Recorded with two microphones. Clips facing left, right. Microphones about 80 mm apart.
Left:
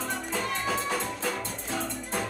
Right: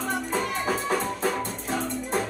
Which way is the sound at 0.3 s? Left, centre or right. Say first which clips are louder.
Right 2 dB; right.